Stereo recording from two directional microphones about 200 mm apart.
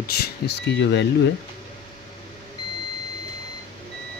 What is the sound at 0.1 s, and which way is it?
Speech, 55° left (ahead or behind).